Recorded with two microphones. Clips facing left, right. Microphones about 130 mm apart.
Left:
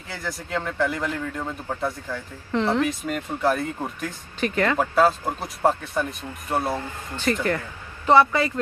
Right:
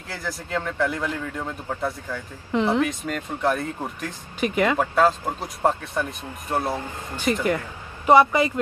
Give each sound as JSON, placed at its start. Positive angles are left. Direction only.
{"t": 0.1, "sound": "speech", "side_deg": 0}
{"t": 2.5, "sound": "speech", "side_deg": -15}
{"t": 2.8, "sound": "speech", "side_deg": 0}
{"t": 4.4, "sound": "speech", "side_deg": -15}
{"t": 4.7, "sound": "speech", "side_deg": 0}
{"t": 7.3, "sound": "speech", "side_deg": -15}